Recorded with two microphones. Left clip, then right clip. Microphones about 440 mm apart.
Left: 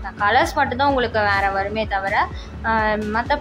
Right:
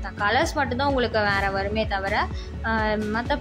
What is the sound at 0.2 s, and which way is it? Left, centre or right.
A woman's voice, right.